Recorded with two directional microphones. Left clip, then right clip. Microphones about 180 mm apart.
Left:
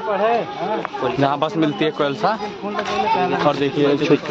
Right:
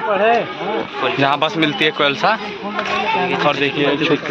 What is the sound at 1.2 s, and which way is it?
Speech, 20° left (ahead or behind).